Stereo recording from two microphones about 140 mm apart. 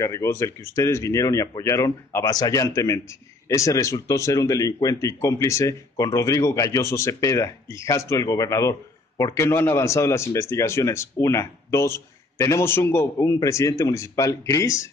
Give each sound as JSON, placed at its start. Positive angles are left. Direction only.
{"t": 0.0, "sound": "speech", "side_deg": 20}